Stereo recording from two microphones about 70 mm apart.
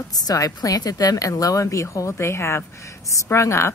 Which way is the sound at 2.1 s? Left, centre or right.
Left.